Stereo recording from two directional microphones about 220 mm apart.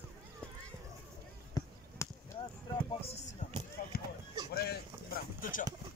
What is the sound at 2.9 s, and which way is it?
Basketball bounce, 25° left (ahead or behind).